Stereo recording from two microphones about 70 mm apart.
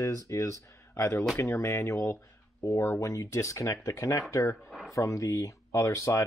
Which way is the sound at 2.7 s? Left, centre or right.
Left.